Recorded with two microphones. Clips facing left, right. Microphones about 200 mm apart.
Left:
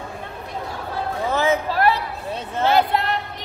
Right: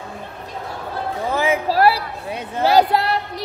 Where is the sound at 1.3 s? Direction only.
15° right (ahead or behind).